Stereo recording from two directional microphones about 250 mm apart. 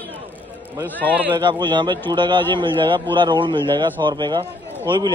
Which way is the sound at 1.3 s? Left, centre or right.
Centre.